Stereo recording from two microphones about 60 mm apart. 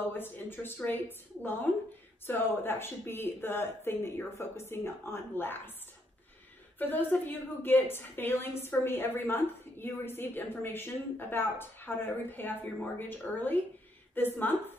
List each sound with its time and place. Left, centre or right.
0.1 s a woman's voice: left
6.8 s a woman's voice: left